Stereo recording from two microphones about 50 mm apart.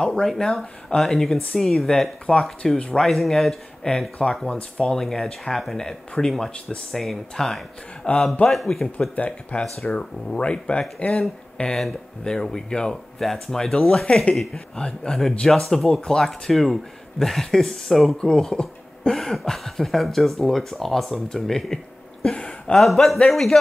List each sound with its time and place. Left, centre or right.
0.0 s speech: centre
0.3 s speech: centre
3.1 s speech: centre
4.5 s speech: centre
4.9 s speech: centre
9.1 s speech: left
12.2 s speech: centre
13.2 s speech: centre
14.3 s speech: centre
14.8 s speech: centre
18.1 s speech: centre
22.8 s speech: centre